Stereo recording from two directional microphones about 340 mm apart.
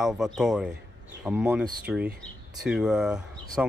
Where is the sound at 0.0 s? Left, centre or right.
Centre.